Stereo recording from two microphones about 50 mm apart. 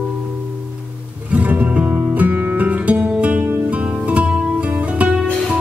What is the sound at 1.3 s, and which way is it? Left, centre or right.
Music, right.